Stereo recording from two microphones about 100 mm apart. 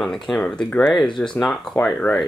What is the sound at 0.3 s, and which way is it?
Speech, 5° left (ahead or behind).